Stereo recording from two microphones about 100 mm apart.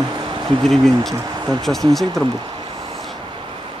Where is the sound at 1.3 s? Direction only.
45° right (ahead or behind).